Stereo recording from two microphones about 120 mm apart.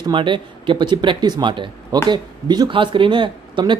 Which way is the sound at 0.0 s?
45° right (ahead or behind).